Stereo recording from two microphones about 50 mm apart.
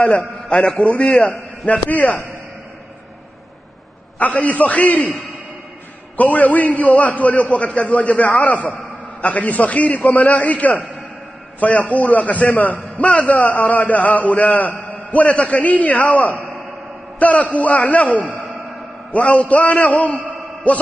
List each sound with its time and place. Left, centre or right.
0.5 s a man's voice: centre
0.7 s a man's voice: left
1.0 s a man's voice: centre
1.9 s a man's voice: left
4.2 s a man's voice: left
6.1 s a man's voice: left